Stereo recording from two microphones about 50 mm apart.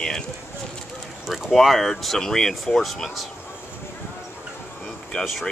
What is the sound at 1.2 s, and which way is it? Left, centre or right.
Speech, centre.